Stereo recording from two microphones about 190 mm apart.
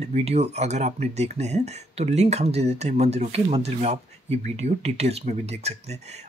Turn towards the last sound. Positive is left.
turn(degrees=-35)  # may be behind; listen again after turning